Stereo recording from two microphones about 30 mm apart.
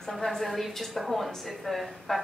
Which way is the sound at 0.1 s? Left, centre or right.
Centre.